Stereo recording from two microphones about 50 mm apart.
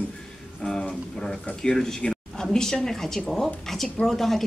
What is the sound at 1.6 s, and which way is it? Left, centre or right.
A woman's voice, centre.